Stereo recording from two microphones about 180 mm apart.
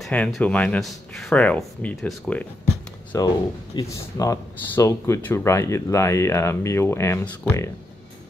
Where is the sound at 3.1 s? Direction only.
20° left (ahead or behind).